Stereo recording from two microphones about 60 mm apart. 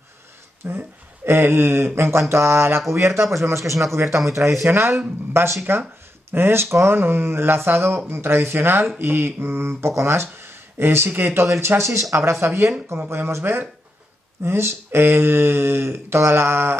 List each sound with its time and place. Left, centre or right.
0.7 s a man's voice: right
4.4 s speech: centre
4.6 s speech: right
10.2 s speech: right
11.6 s a man's voice: right
13.1 s speech: right